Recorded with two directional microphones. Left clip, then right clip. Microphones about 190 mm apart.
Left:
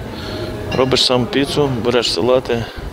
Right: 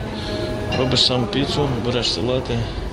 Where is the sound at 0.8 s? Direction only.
30° left (ahead or behind).